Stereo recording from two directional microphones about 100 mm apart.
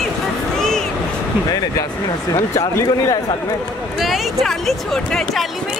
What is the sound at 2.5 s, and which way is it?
Speech, 30° left (ahead or behind).